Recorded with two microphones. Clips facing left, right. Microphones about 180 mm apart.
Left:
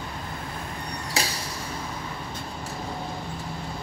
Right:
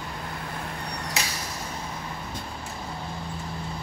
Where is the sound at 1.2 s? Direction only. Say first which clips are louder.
Left 4 dB; 30° left (ahead or behind).